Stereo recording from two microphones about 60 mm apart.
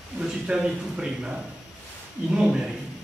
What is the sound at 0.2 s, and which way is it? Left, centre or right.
A man's voice, centre.